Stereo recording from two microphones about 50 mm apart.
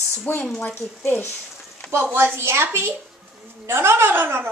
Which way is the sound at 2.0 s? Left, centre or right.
Right.